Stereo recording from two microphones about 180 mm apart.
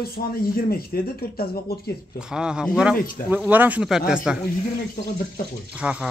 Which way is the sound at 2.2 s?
5° right (ahead or behind).